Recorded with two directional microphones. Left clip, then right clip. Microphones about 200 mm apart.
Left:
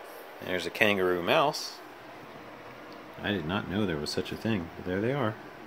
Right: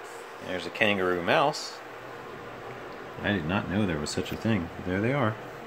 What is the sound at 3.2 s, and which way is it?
Speech, 10° left (ahead or behind).